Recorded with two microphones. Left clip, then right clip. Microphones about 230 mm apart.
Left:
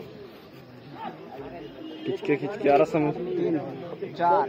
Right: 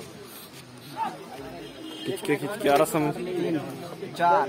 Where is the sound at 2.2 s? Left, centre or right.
Right.